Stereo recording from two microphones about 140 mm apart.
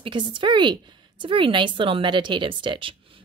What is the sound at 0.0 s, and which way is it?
Speech, 35° right (ahead or behind).